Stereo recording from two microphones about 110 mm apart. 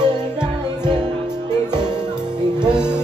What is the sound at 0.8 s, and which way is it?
Music, 40° right (ahead or behind).